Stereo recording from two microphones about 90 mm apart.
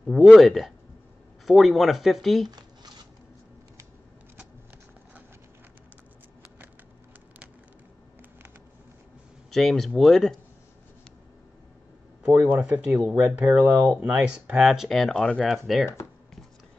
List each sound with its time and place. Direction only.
0.0 s speech: centre (ahead or behind)
9.5 s speech: 5° left (ahead or behind)
12.3 s speech: 15° right (ahead or behind)